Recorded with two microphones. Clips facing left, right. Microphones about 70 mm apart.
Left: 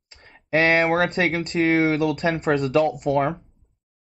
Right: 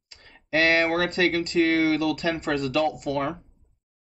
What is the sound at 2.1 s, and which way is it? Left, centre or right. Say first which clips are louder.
Speech: left 4 dB; left.